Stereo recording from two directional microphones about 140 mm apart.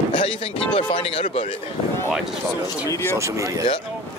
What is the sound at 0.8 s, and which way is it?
Speech, 40° left (ahead or behind).